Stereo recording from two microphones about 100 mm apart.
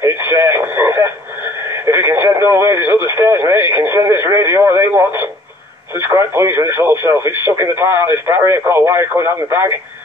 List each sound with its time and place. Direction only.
0.0 s radio: 25° right (ahead or behind)
1.9 s speech: 25° right (ahead or behind)